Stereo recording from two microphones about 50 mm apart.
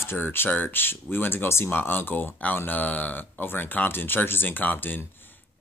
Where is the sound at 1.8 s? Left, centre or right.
Left.